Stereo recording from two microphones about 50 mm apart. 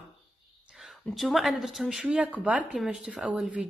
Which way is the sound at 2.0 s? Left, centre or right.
Centre.